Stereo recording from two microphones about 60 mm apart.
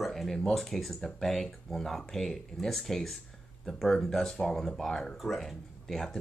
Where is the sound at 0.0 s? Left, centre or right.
Centre.